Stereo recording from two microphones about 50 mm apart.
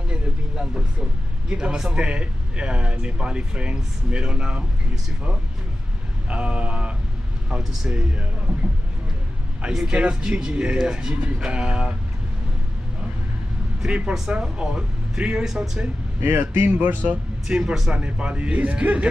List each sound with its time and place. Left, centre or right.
0.1 s vehicle: centre
1.5 s speech: centre
6.2 s speech: right
7.4 s speech: centre
7.9 s speech: right
9.6 s speech: centre
13.8 s speech: centre
16.2 s speech: right
17.5 s speech: right